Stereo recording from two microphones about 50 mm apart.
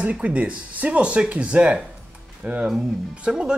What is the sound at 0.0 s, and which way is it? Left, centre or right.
Speech, right.